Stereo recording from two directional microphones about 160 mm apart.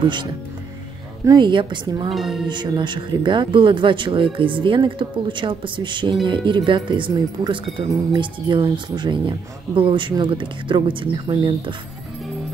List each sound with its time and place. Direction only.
0.0 s speech: 30° right (ahead or behind)
2.1 s music: centre (ahead or behind)
2.4 s speech: 30° right (ahead or behind)